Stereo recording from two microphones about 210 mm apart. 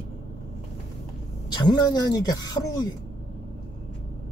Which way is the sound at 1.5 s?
20° left (ahead or behind).